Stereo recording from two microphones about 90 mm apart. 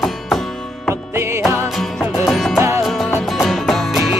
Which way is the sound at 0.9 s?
30° right (ahead or behind).